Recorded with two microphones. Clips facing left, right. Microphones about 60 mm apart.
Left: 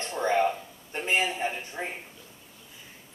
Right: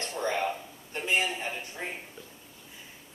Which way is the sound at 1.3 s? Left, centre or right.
Left.